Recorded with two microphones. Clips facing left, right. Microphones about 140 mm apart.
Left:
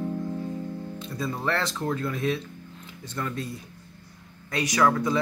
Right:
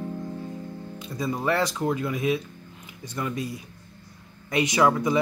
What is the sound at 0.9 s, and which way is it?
Speech, 15° right (ahead or behind).